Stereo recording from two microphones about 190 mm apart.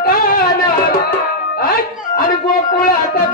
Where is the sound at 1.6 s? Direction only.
50° left (ahead or behind).